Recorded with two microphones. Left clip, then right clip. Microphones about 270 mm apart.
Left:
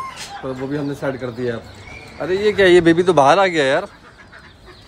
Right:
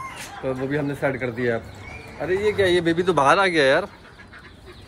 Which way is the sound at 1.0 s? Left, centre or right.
Centre.